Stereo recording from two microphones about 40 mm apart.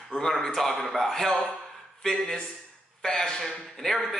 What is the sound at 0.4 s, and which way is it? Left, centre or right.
Speech, centre.